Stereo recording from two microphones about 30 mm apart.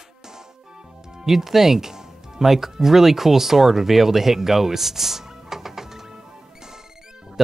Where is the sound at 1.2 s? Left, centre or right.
Centre.